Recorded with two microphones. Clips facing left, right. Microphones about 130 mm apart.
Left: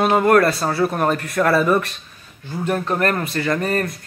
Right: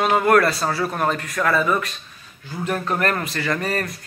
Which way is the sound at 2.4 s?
20° left (ahead or behind).